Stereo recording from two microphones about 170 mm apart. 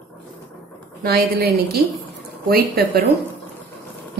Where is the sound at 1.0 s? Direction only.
65° right (ahead or behind).